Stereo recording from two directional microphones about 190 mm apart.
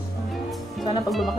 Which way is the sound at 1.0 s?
Centre (ahead or behind).